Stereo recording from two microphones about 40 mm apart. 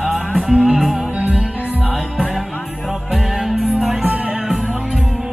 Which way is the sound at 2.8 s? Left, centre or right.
Centre.